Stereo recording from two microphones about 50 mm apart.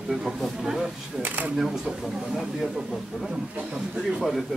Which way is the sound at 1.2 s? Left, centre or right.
Right.